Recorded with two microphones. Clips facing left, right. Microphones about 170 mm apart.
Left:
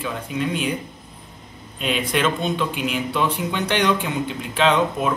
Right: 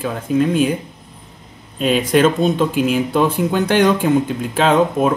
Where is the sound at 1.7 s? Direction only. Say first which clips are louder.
Right 8 dB; 40° right (ahead or behind).